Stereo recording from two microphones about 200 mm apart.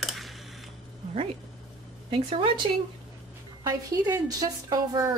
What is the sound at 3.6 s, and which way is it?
A woman's voice, 20° right (ahead or behind).